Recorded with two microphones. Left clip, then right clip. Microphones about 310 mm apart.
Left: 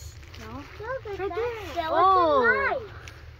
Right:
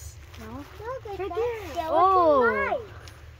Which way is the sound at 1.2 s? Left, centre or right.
Right.